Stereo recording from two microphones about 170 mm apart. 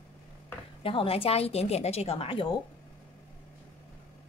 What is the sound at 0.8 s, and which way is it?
A woman's voice, 35° left (ahead or behind).